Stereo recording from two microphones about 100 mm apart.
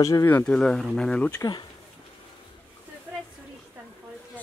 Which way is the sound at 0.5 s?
5° left (ahead or behind).